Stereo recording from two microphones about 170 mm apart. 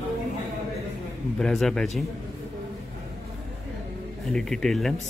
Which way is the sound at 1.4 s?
Centre (ahead or behind).